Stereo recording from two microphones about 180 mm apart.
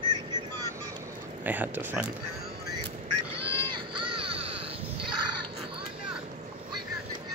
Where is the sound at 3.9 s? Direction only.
30° right (ahead or behind).